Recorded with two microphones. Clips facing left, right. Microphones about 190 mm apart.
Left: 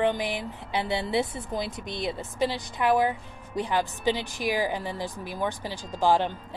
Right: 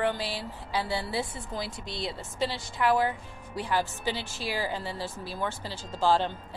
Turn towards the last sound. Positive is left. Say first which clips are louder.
# left 2 dB
turn(degrees=15)  # may be behind; listen again after turning